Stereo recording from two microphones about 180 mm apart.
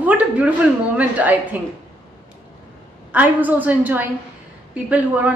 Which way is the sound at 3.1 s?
10° right (ahead or behind).